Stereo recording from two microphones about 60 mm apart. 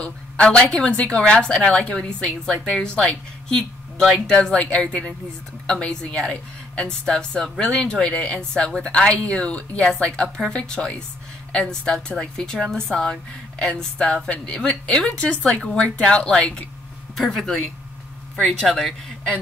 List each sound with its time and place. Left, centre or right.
0.0 s a sound: centre
0.7 s a woman's voice: centre
15.0 s a woman's voice: left
17.2 s speech: centre